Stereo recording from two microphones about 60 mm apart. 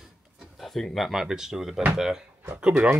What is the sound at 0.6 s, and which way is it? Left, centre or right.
Speech, centre.